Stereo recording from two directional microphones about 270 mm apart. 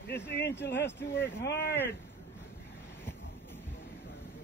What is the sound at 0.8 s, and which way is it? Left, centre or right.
Speech, centre.